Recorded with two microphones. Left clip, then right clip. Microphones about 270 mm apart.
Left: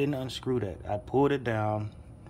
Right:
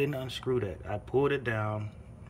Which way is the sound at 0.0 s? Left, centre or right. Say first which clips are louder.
Left 1 dB; centre.